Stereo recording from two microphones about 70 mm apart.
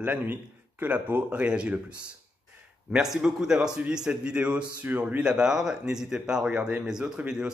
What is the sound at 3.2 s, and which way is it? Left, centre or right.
A man's voice, centre.